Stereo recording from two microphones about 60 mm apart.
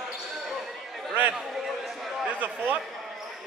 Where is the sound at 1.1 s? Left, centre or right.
Right.